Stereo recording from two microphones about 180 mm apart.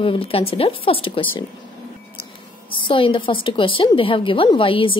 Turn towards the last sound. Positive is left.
turn(degrees=30)  # may be behind; listen again after turning